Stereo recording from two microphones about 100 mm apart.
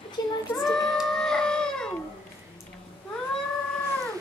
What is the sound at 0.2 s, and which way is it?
Child singing, 45° left (ahead or behind).